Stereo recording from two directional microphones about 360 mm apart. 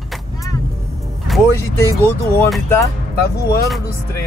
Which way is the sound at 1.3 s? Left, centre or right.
Centre.